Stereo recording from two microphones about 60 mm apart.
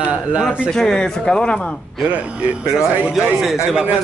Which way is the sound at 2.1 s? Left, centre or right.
Right.